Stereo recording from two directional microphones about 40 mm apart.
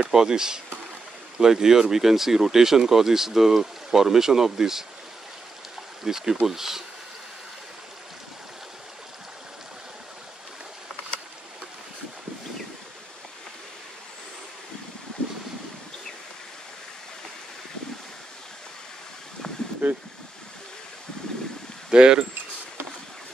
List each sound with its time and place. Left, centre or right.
0.1 s speech: centre
6.0 s speech: centre
19.8 s a sound: right
21.9 s speech: right